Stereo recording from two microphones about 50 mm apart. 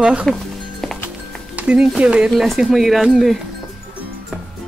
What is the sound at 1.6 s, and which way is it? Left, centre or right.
Speech, right.